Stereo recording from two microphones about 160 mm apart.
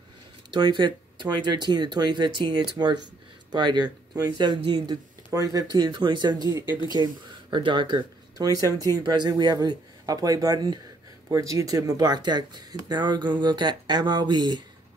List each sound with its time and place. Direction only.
0.5 s speech: 30° right (ahead or behind)